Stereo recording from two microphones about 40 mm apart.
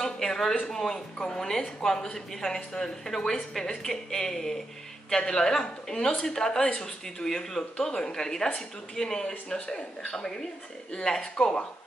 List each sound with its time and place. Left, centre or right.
0.0 s a woman's voice: centre